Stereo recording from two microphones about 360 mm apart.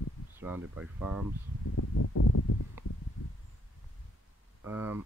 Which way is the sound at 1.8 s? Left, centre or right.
Left.